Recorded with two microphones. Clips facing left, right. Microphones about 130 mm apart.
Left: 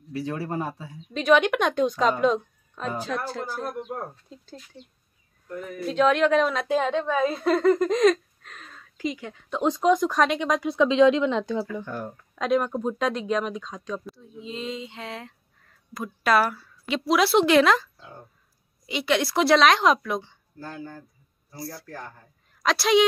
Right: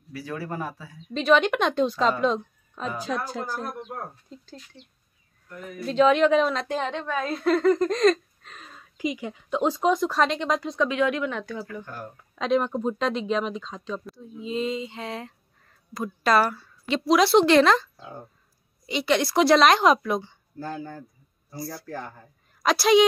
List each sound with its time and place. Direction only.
0.1 s speech: 25° left (ahead or behind)
1.1 s speech: 5° left (ahead or behind)
4.7 s speech: 10° left (ahead or behind)
10.8 s speech: 20° left (ahead or behind)
12.4 s speech: 5° left (ahead or behind)
18.9 s speech: centre (ahead or behind)
22.6 s a woman's voice: centre (ahead or behind)